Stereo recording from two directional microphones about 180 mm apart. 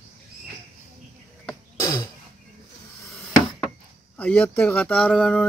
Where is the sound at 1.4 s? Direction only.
20° left (ahead or behind).